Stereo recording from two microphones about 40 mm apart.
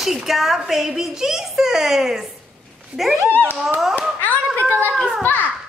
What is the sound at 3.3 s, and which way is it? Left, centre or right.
Speech, left.